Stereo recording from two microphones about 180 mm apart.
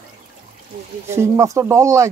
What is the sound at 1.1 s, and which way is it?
Speech, 15° right (ahead or behind).